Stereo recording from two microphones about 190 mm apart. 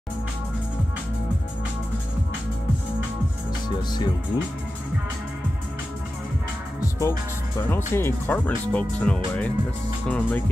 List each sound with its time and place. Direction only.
3.6 s speech: 20° left (ahead or behind)
7.0 s speech: 15° left (ahead or behind)